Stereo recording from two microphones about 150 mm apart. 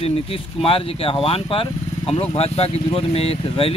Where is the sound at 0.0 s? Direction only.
40° left (ahead or behind).